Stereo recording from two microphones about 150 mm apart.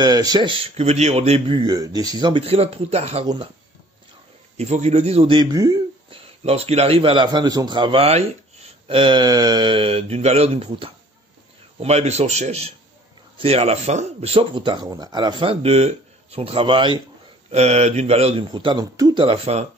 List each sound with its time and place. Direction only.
0.0 s speech: 25° right (ahead or behind); by 3.3 s 45° right (ahead or behind)
4.6 s speech: 45° right (ahead or behind); by 5.8 s 25° right (ahead or behind)
6.0 s speech: 40° right (ahead or behind)
17.5 s speech: 45° right (ahead or behind)
18.5 s speech: 30° right (ahead or behind)